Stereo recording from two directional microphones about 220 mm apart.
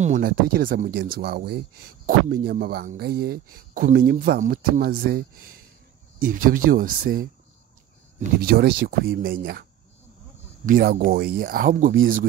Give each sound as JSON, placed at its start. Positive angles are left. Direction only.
{"t": 0.0, "sound": "speech", "side_deg": -40}
{"t": 8.4, "sound": "speech", "side_deg": -45}